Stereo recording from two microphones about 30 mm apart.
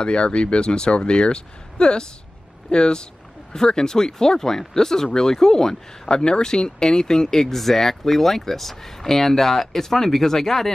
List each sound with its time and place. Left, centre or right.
0.0 s speech: left; by 10.7 s centre